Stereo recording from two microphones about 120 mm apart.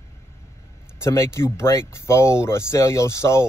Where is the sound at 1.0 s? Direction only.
20° left (ahead or behind).